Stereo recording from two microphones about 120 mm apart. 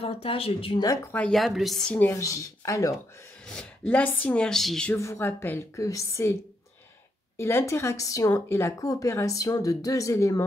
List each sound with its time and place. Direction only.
0.0 s speech: 55° left (ahead or behind)
0.7 s speech: 30° left (ahead or behind)
1.1 s speech: 5° left (ahead or behind); by 3.0 s 30° left (ahead or behind)
3.4 s speech: 5° left (ahead or behind)
4.9 s speech: 25° left (ahead or behind)
7.3 s speech: 20° left (ahead or behind)